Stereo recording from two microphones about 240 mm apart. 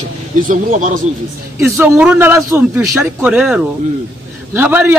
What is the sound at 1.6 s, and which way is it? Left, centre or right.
A man's voice, centre.